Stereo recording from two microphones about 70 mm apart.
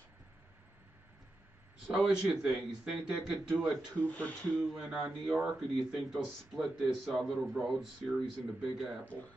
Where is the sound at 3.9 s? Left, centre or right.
Left.